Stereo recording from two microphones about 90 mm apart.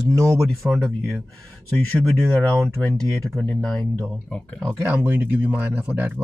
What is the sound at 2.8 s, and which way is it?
Speech, 5° left (ahead or behind).